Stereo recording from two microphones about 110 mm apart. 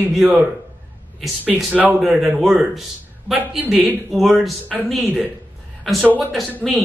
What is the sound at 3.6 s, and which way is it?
Speech, 15° right (ahead or behind).